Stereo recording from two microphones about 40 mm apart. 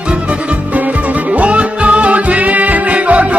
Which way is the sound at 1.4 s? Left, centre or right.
Right.